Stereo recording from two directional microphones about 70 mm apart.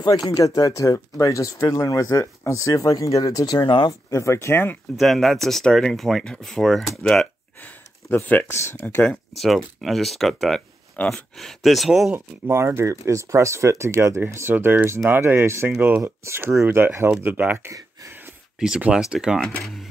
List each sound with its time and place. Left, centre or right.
0.0 s speech: left
4.1 s speech: left
4.9 s speech: centre
7.6 s a sound: left
8.7 s speech: left
9.8 s speech: centre
11.0 s speech: left
11.3 s speech: centre
12.1 s speech: right
14.5 s speech: right
16.6 s speech: right
18.9 s speech: centre